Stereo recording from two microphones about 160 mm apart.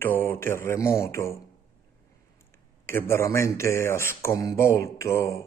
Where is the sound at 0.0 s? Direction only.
15° left (ahead or behind).